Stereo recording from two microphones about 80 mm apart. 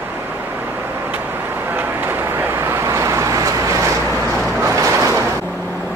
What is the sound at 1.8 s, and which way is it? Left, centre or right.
Vehicle, right.